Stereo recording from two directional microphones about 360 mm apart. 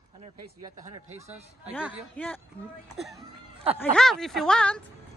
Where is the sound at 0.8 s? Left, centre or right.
Centre.